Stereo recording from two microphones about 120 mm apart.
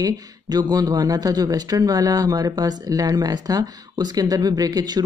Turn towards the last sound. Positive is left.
turn(degrees=-35)  # may be behind; listen again after turning